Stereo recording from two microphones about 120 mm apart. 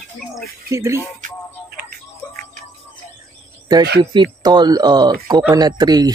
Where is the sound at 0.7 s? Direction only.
25° right (ahead or behind).